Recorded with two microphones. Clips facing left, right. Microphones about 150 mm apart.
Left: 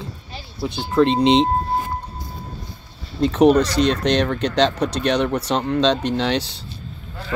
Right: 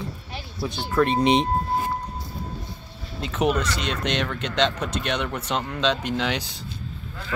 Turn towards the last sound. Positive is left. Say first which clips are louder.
# left 5 dB
turn(degrees=30)  # may be behind; listen again after turning